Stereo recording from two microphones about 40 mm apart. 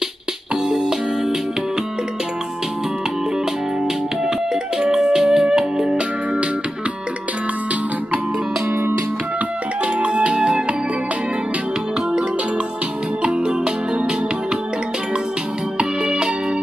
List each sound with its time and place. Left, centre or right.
0.7 s music: centre
4.7 s music: centre
9.9 s music: right
13.2 s music: right
15.8 s music: right